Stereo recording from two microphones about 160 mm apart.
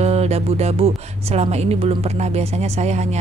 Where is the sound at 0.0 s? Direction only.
40° right (ahead or behind).